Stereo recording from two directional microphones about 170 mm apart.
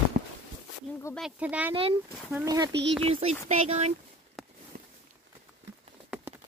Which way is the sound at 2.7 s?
90° right.